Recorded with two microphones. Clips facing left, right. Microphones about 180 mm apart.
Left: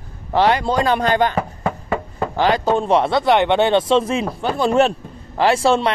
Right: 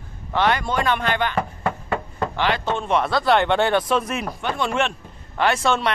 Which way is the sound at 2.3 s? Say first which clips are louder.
Left 7 dB; 40° left (ahead or behind).